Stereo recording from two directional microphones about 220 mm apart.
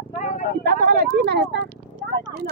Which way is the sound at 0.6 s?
45° right (ahead or behind).